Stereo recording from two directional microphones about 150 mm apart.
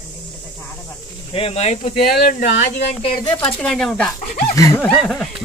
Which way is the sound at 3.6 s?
Centre (ahead or behind).